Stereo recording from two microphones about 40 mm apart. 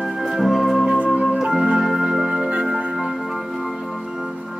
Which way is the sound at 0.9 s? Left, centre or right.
Right.